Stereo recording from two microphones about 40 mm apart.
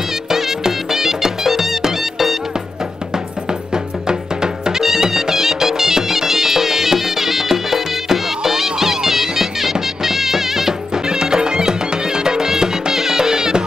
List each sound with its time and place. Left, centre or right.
0.3 s music: centre
3.7 s music: centre